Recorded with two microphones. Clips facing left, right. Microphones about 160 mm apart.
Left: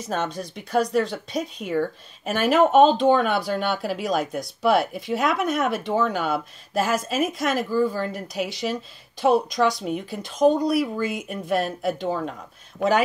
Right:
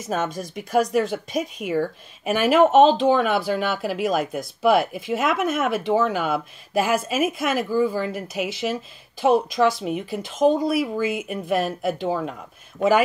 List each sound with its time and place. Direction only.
0.0 s a woman's voice: 10° right (ahead or behind)